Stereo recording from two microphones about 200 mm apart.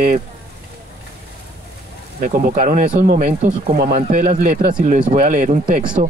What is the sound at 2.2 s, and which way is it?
Speech, 45° right (ahead or behind).